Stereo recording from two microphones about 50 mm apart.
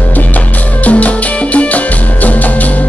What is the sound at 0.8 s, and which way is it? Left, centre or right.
Music, left.